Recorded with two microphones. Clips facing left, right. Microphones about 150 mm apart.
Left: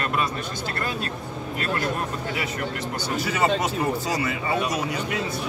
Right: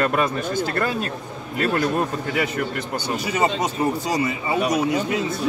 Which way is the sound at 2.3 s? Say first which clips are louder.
Right 6 dB; 55° right (ahead or behind).